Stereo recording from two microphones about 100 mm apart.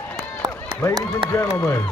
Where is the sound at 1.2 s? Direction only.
30° left (ahead or behind).